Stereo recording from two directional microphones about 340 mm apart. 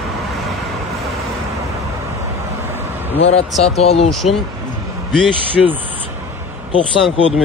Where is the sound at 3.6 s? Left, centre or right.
Centre.